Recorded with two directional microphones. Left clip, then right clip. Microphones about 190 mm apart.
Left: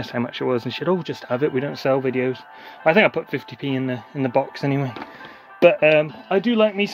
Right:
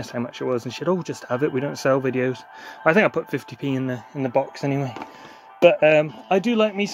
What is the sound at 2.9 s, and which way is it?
Speech, 20° right (ahead or behind).